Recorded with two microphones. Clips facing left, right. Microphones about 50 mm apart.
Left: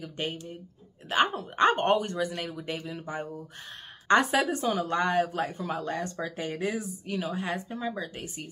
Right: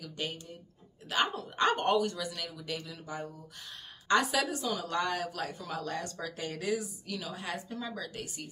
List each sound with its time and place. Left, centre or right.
0.0 s a woman's voice: left